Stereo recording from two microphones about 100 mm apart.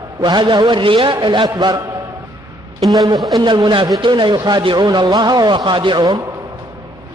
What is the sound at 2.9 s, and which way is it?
A man's voice, 40° right (ahead or behind).